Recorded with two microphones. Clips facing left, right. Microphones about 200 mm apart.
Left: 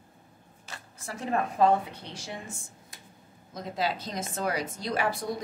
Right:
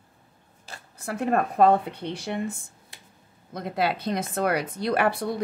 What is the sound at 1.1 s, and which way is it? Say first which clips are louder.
Speech: right 5 dB; 60° right (ahead or behind).